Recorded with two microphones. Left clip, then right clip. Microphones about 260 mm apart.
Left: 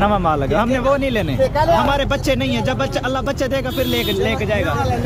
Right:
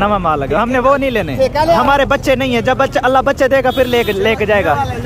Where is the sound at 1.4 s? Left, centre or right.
Right.